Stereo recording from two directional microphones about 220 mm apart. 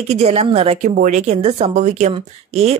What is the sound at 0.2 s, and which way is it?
A woman's voice, 30° right (ahead or behind).